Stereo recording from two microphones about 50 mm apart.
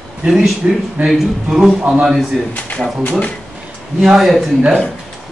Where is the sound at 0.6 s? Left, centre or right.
Centre.